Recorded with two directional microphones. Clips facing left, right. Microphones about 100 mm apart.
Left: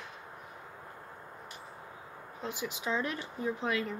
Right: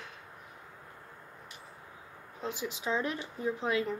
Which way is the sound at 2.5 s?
25° right (ahead or behind).